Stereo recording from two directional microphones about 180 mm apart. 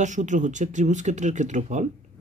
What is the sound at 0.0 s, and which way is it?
Speech, 45° right (ahead or behind).